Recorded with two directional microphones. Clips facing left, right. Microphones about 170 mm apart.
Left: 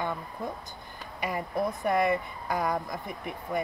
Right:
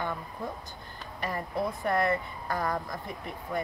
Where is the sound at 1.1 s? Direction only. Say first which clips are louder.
Left 2 dB; 15° left (ahead or behind).